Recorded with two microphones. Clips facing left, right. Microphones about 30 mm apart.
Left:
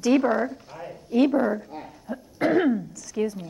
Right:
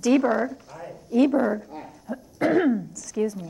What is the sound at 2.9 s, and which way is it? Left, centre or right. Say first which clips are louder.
Speech: right 1 dB; left.